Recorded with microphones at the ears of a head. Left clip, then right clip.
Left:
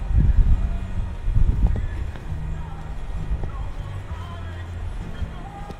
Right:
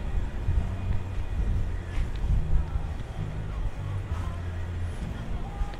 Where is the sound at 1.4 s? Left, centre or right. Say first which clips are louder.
Left 10 dB; left.